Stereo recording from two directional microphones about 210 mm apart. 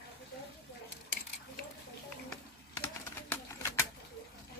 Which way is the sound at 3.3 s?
15° left (ahead or behind).